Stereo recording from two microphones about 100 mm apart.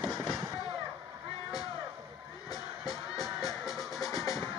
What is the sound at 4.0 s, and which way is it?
Music, 40° left (ahead or behind).